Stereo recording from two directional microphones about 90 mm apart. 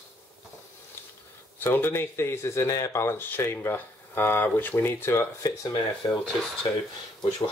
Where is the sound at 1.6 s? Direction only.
25° left (ahead or behind).